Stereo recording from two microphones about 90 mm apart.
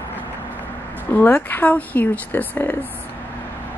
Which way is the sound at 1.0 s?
20° left (ahead or behind).